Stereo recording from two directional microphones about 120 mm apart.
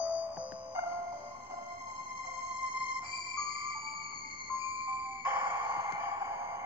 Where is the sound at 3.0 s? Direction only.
45° right (ahead or behind).